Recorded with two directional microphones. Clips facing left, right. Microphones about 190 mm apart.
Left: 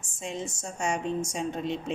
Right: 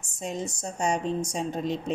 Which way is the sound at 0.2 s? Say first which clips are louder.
Right 3 dB; 40° right (ahead or behind).